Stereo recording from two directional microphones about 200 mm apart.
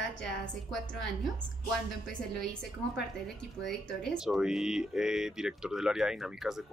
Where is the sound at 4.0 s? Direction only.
Centre (ahead or behind).